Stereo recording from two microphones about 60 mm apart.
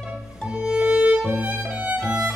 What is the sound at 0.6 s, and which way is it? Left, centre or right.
Music, centre.